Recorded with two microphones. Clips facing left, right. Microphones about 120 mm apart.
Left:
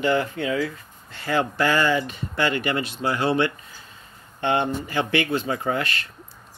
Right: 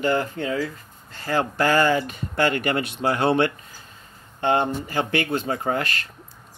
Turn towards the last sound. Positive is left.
turn(degrees=-45)  # may be behind; listen again after turning